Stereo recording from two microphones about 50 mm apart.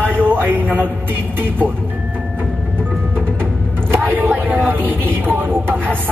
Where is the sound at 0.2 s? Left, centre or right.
Right.